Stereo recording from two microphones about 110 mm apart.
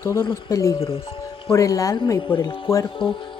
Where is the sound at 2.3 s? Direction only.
50° left (ahead or behind).